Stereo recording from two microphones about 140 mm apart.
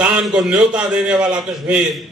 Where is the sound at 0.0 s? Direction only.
5° right (ahead or behind).